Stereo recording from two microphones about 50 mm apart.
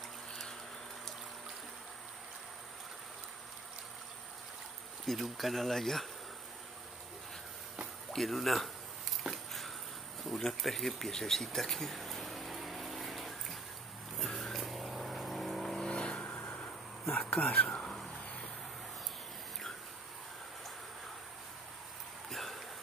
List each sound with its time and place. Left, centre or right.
5.0 s speech: centre
8.1 s speech: centre
9.3 s a sound: centre
14.1 s vehicle: centre
15.9 s vehicle: centre
16.3 s vehicle: left
17.2 s speech: centre
22.3 s a sound: centre